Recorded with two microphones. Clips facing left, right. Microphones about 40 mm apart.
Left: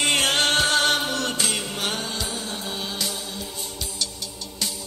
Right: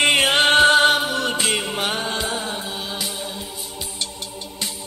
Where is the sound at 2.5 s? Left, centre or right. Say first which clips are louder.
Right 2 dB; centre.